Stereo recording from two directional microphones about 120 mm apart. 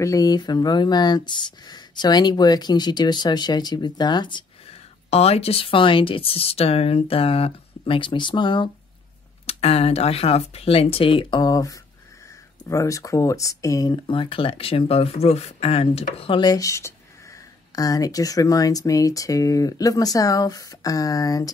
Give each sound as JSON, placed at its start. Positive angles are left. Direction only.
{"t": 0.0, "sound": "speech", "side_deg": 30}
{"t": 4.6, "sound": "speech", "side_deg": 60}
{"t": 9.5, "sound": "speech", "side_deg": 60}
{"t": 16.3, "sound": "speech", "side_deg": 35}